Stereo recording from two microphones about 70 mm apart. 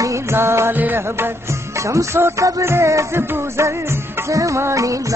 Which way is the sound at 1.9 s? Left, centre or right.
Right.